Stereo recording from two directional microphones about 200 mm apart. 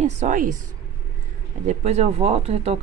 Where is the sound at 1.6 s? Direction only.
35° right (ahead or behind).